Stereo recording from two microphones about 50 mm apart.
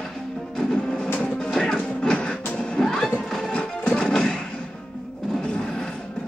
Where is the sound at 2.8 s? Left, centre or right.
Centre.